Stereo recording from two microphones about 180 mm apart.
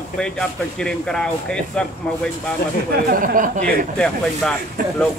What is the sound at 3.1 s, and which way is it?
Speech, 50° right (ahead or behind).